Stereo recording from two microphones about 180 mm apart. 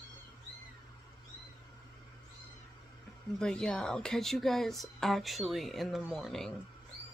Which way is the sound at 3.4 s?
5° left (ahead or behind).